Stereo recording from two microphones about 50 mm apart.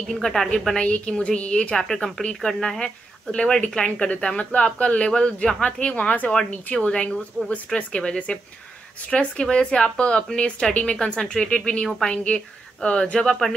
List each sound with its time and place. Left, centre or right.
0.1 s speech: centre
0.7 s a woman's voice: left